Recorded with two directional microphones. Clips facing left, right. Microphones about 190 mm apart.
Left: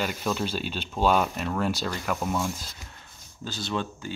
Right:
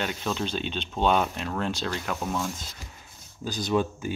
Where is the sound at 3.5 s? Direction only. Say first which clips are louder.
Right 5 dB; 15° right (ahead or behind).